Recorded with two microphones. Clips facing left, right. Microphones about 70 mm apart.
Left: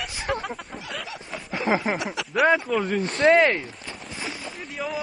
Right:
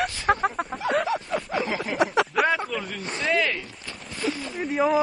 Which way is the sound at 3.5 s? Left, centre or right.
Left.